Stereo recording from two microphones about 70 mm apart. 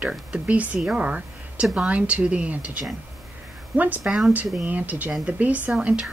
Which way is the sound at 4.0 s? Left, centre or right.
Centre.